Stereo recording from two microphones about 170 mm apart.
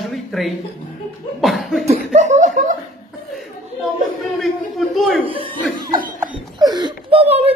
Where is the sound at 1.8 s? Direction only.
40° right (ahead or behind).